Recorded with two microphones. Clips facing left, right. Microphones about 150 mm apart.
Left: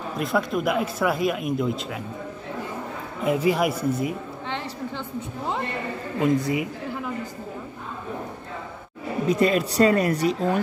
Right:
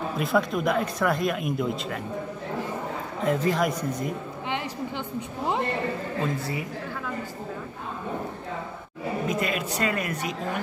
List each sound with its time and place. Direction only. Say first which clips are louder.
0.2 s speech: left 1 dB; centre (ahead or behind)
3.3 s speech: left 3 dB; 10° left (ahead or behind)
6.2 s speech: left 12 dB; 15° left (ahead or behind)
9.3 s speech: left 7 dB; 35° left (ahead or behind)